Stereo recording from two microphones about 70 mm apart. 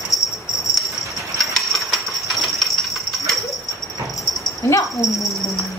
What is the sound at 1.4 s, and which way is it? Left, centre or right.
Mechanisms, centre.